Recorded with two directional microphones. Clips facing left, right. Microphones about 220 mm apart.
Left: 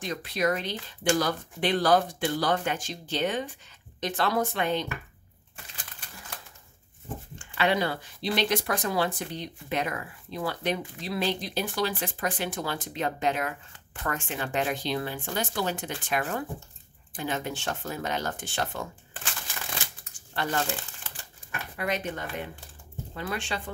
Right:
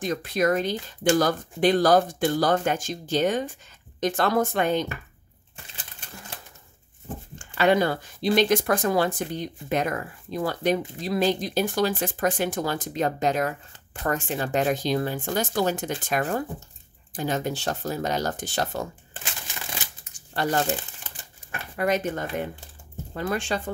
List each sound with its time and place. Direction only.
0.0 s speech: 45° right (ahead or behind)
7.3 s speech: 45° right (ahead or behind)
20.6 s crumpling: 20° right (ahead or behind)
21.7 s speech: 45° right (ahead or behind)